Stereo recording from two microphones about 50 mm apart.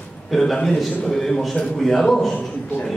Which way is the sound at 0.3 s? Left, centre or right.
Centre.